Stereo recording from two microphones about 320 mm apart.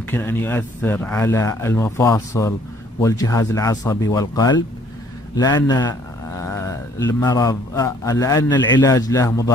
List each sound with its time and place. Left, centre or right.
0.1 s speech: centre